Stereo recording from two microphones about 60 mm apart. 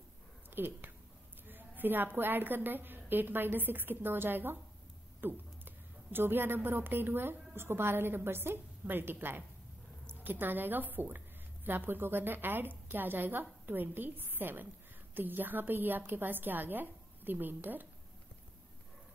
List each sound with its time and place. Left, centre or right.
0.6 s a woman's voice: right